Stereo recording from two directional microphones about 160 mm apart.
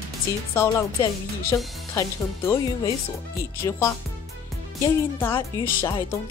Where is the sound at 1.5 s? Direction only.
20° left (ahead or behind).